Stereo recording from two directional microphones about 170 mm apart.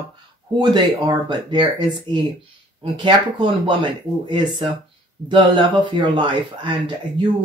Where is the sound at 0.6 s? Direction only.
25° right (ahead or behind).